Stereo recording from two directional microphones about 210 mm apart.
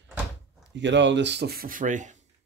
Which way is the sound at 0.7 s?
60° right (ahead or behind).